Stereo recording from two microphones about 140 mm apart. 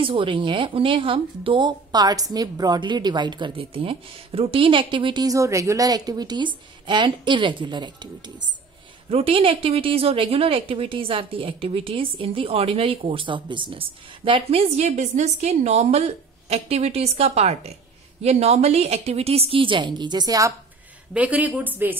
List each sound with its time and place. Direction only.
0.0 s speech: 40° right (ahead or behind)
9.1 s a woman's voice: 40° right (ahead or behind); by 20.5 s 25° right (ahead or behind)
21.1 s speech: 10° right (ahead or behind)